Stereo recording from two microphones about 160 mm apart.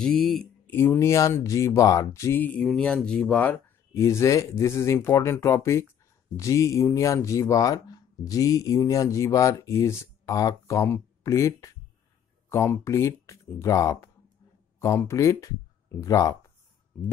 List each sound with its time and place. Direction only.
0.0 s speech: centre (ahead or behind)
0.7 s speech: 15° left (ahead or behind)